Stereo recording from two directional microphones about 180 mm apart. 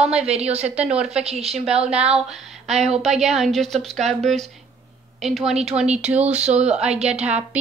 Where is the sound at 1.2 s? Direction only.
35° right (ahead or behind).